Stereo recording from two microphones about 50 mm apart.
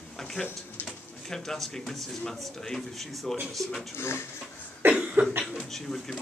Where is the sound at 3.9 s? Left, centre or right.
Left.